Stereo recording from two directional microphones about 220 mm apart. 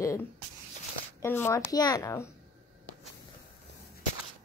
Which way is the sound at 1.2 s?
10° left (ahead or behind).